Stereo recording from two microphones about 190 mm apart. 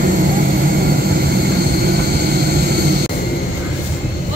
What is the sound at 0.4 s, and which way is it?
Vehicle, 55° right (ahead or behind).